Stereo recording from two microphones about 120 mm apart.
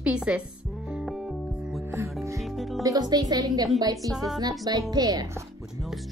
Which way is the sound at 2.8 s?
30° right (ahead or behind).